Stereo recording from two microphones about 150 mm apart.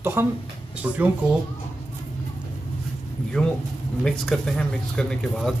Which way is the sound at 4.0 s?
5° left (ahead or behind).